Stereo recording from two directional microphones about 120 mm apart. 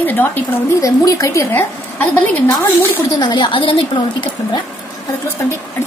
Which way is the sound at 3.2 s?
40° left (ahead or behind).